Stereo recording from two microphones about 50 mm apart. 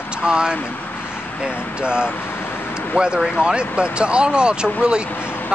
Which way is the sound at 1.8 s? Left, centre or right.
Centre.